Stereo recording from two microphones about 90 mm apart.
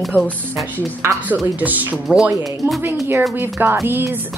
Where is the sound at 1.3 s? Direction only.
15° right (ahead or behind).